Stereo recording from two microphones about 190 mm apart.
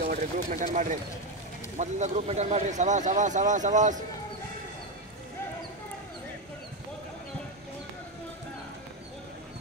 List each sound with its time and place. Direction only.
0.1 s speech: 45° right (ahead or behind)